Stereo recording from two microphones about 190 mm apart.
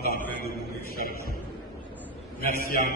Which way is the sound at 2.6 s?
50° left (ahead or behind).